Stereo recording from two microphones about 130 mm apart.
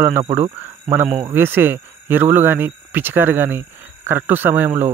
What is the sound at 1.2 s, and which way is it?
Speech, 15° right (ahead or behind).